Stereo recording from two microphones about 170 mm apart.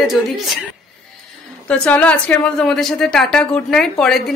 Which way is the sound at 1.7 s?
5° left (ahead or behind).